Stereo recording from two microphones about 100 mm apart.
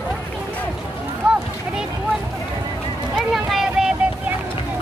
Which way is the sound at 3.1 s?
Centre (ahead or behind).